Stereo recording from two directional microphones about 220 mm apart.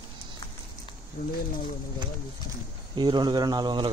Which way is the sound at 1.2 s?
35° left (ahead or behind).